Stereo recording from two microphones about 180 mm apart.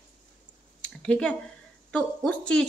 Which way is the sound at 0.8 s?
5° left (ahead or behind).